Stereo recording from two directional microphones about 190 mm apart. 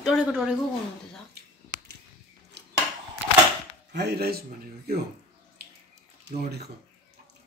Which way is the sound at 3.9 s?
60° right (ahead or behind).